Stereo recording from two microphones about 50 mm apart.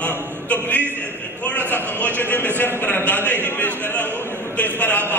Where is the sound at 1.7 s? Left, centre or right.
Left.